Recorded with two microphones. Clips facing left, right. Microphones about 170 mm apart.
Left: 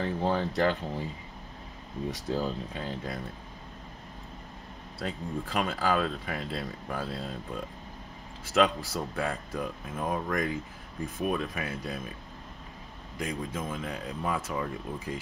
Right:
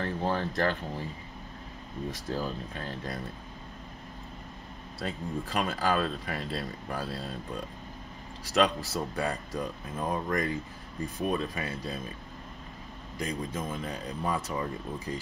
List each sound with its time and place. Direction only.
0.0 s speech: 10° left (ahead or behind)
2.0 s speech: 15° left (ahead or behind)
5.0 s speech: centre (ahead or behind)
13.2 s speech: 5° left (ahead or behind)